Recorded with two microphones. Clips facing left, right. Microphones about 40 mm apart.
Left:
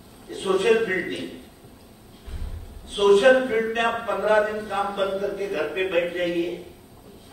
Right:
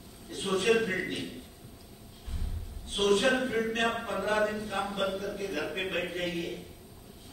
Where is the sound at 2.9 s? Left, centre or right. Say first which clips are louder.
Left 10 dB; centre.